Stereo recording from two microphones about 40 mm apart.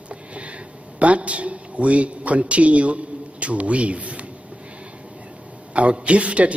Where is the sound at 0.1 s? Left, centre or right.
Right.